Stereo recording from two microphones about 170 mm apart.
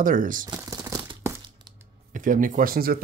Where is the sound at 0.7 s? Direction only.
20° right (ahead or behind).